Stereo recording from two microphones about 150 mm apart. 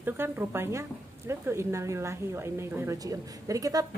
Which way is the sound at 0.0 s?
15° right (ahead or behind).